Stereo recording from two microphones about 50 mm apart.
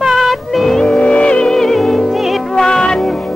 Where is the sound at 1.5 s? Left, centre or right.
Centre.